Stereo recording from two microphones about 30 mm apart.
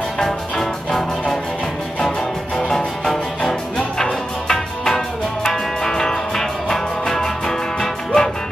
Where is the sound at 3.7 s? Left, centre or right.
Left.